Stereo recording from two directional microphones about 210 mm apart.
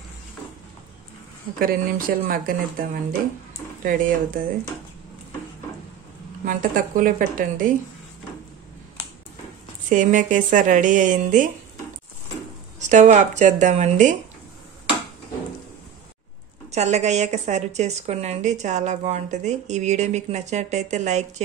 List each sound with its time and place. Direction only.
1.6 s a woman's voice: 40° right (ahead or behind)
6.4 s a woman's voice: 40° right (ahead or behind)
9.8 s a woman's voice: 40° right (ahead or behind)
12.7 s a woman's voice: 35° right (ahead or behind)
16.7 s a woman's voice: 30° right (ahead or behind)